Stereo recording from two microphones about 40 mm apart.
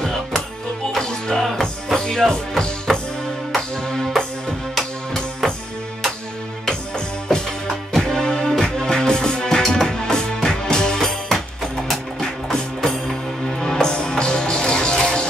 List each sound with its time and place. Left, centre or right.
0.0 s music: centre
5.4 s music: centre
8.0 s music: centre